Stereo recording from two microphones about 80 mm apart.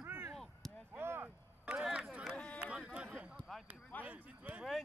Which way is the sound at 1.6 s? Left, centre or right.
Centre.